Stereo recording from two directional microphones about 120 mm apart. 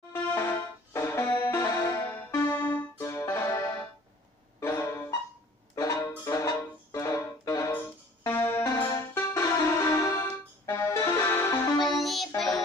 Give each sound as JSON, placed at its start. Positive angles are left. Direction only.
{"t": 0.1, "sound": "music", "side_deg": 20}
{"t": 8.6, "sound": "music", "side_deg": 35}
{"t": 9.1, "sound": "music", "side_deg": 25}
{"t": 11.8, "sound": "music", "side_deg": 0}